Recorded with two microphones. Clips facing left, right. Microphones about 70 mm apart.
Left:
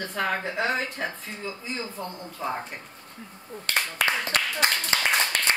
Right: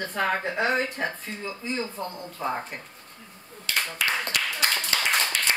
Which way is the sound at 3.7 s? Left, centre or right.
Left.